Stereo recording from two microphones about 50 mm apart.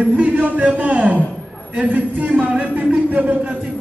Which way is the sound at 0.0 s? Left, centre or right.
Right.